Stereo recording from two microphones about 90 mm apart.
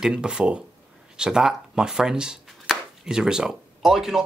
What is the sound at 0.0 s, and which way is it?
Speech, 10° right (ahead or behind).